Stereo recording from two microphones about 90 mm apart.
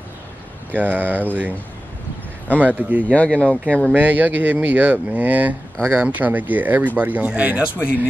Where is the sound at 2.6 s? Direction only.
20° right (ahead or behind).